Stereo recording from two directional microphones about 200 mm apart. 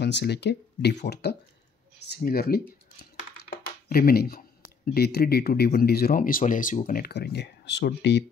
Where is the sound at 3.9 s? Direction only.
50° left (ahead or behind).